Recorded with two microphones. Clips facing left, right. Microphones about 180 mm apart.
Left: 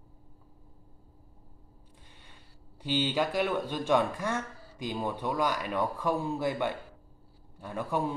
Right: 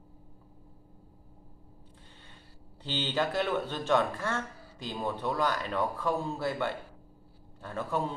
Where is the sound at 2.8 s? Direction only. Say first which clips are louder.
Left 2 dB; 10° left (ahead or behind).